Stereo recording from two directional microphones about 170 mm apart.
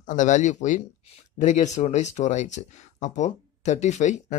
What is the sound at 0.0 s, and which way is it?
Speech, 45° left (ahead or behind).